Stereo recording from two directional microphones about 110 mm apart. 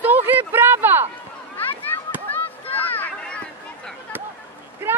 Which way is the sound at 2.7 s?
15° left (ahead or behind).